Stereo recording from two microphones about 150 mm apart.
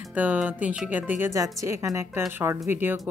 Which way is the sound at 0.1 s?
10° right (ahead or behind).